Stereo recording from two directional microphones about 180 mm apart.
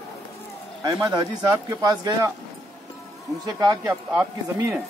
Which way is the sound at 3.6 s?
20° right (ahead or behind).